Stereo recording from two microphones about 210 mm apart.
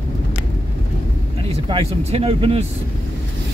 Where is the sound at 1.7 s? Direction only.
20° right (ahead or behind).